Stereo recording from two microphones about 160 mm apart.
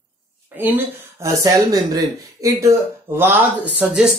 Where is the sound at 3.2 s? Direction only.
10° right (ahead or behind).